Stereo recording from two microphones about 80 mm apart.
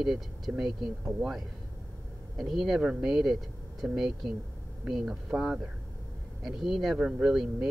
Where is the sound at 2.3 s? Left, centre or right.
Centre.